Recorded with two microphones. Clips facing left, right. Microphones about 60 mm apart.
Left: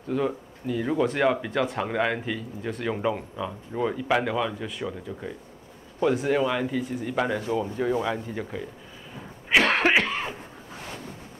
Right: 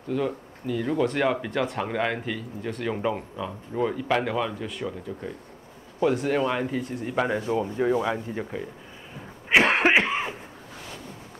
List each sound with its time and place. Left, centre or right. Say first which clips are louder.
0.1 s speech: left 1 dB; centre
7.2 s speech: right 1 dB; centre
9.5 s cough: right 1 dB; right